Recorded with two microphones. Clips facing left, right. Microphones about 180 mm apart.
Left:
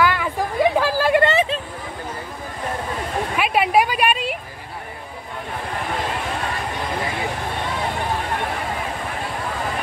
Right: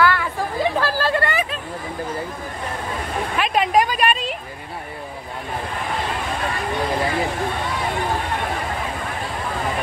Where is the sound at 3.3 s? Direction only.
10° left (ahead or behind).